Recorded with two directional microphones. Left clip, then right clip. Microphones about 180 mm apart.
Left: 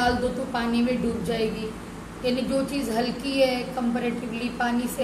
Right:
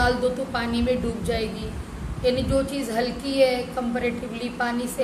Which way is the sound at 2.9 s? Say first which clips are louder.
Right 2 dB; 15° right (ahead or behind).